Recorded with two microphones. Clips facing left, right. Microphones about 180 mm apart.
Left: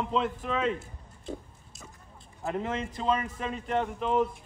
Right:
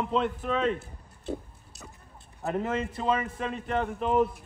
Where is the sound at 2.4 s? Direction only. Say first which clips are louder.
Right 2 dB; 5° right (ahead or behind).